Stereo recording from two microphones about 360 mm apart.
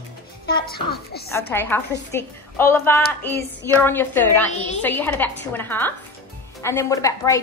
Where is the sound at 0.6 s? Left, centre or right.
Left.